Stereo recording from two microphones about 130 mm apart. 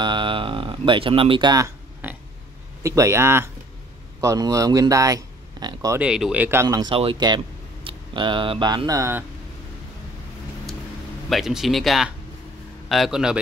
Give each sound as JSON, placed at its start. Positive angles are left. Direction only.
{"t": 0.0, "sound": "a sound", "side_deg": -40}
{"t": 2.8, "sound": "speech", "side_deg": -20}
{"t": 5.9, "sound": "speech", "side_deg": -5}
{"t": 6.8, "sound": "speech", "side_deg": -45}
{"t": 11.2, "sound": "a man's voice", "side_deg": 0}